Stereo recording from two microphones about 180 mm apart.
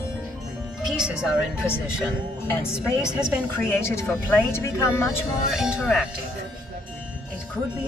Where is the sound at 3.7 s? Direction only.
15° left (ahead or behind).